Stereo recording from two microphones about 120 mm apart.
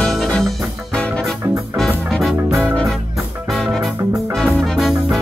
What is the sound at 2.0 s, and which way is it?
Music, centre (ahead or behind).